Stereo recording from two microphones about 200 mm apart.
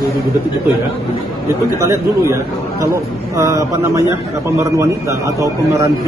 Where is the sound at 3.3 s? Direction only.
15° right (ahead or behind).